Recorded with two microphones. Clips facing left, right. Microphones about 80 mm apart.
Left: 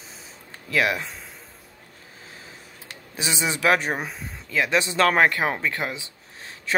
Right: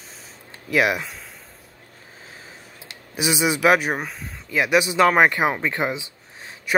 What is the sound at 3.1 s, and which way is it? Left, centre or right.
Speech, centre.